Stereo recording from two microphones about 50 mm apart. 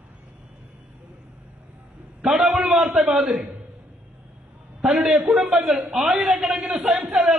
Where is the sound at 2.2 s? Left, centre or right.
Centre.